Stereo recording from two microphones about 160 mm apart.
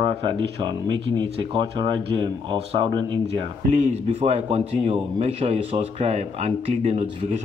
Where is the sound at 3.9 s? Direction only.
45° right (ahead or behind).